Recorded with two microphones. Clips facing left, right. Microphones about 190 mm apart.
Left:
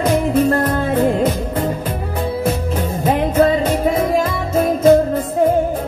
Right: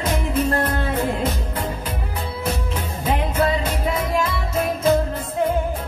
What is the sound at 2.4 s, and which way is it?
Music, 45° left (ahead or behind).